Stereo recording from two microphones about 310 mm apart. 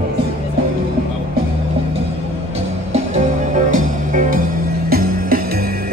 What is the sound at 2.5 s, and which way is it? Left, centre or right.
Music, right.